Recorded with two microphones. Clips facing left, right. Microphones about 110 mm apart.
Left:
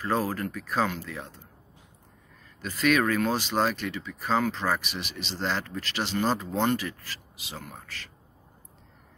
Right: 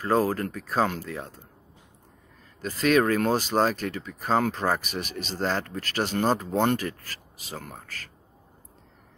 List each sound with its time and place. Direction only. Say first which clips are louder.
0.0 s speech: right 4 dB; 35° right (ahead or behind)
2.6 s speech: right 2 dB; 35° right (ahead or behind)